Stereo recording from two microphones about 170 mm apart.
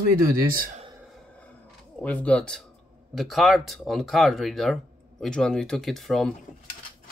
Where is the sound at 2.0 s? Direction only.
10° left (ahead or behind).